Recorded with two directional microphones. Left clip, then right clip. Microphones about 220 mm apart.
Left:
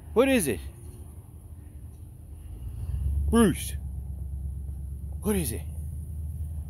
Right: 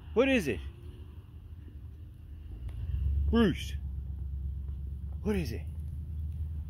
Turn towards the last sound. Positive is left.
turn(degrees=5)  # may be behind; listen again after turning